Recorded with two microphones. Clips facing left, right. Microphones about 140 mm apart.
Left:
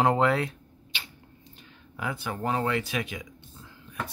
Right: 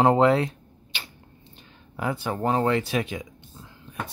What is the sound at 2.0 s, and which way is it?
Speech, 35° right (ahead or behind).